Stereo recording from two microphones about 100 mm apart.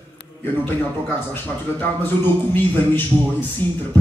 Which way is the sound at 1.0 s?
20° left (ahead or behind).